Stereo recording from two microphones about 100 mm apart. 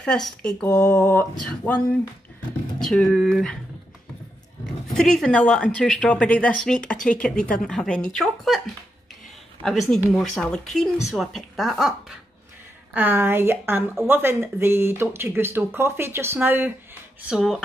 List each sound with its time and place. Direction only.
0.0 s speech: 10° left (ahead or behind)
2.8 s a woman's voice: 5° left (ahead or behind)
4.8 s speech: 5° left (ahead or behind)
9.6 s a woman's voice: 5° left (ahead or behind)
12.9 s speech: 20° right (ahead or behind)
17.3 s a woman's voice: centre (ahead or behind)